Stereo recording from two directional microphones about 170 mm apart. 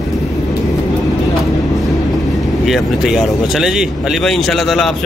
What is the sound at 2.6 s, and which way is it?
Speech, centre (ahead or behind).